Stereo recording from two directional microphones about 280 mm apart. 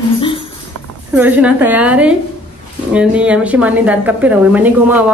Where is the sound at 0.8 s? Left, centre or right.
Right.